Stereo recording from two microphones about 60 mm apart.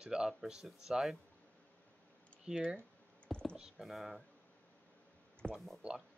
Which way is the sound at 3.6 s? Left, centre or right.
Centre.